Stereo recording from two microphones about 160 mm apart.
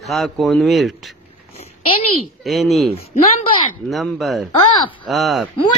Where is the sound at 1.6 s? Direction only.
35° left (ahead or behind).